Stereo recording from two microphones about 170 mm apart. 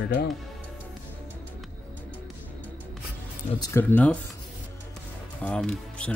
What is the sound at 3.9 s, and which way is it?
Speech, 5° left (ahead or behind).